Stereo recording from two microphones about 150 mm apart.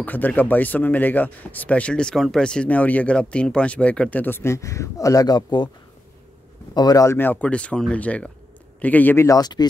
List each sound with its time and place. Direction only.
0.0 s speech: 10° left (ahead or behind); by 5.7 s 30° left (ahead or behind)
6.7 s speech: 25° left (ahead or behind)